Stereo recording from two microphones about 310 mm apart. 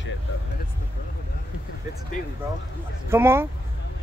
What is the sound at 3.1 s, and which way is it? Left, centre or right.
Speech, centre.